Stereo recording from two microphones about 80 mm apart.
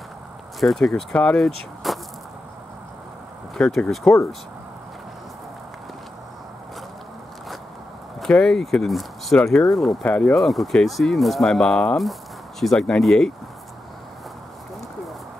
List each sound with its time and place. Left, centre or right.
0.6 s speech: centre
1.1 s speech: centre
1.4 s speech: centre
3.6 s speech: centre
8.2 s speech: centre
10.0 s speech: centre
10.3 s speech: centre